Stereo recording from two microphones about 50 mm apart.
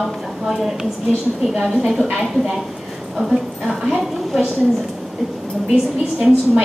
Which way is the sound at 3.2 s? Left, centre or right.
Centre.